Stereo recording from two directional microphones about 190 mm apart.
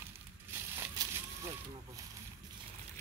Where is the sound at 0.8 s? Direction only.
15° right (ahead or behind).